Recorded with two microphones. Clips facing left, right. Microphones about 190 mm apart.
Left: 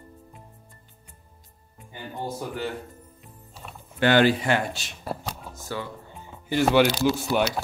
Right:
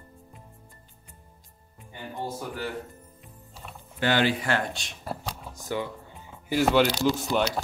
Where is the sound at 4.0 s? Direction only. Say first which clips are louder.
Left 5 dB; 65° left (ahead or behind).